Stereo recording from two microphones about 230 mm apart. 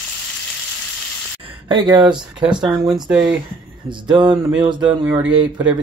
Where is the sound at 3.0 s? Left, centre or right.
Centre.